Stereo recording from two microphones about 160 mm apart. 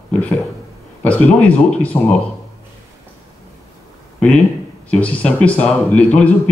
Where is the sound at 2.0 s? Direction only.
30° left (ahead or behind).